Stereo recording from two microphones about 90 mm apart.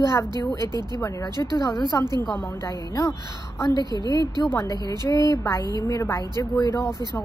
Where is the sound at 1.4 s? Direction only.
40° left (ahead or behind).